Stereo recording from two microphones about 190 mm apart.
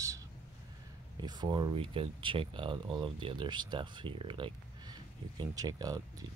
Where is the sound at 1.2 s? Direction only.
20° right (ahead or behind).